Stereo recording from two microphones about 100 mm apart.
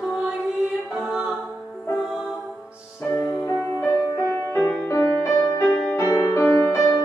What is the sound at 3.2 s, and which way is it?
Music, 40° left (ahead or behind).